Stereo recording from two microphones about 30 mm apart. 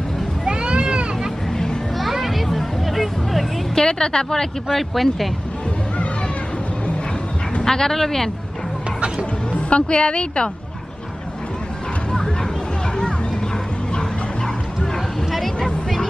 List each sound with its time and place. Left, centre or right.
0.5 s a sound: right
2.1 s music: centre
3.7 s a woman's voice: left
4.7 s speech: centre
7.6 s speech: centre
9.5 s a woman's voice: left
15.6 s a sound: centre